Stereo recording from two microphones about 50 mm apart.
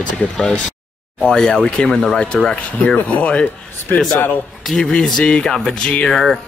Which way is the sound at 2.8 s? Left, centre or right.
Left.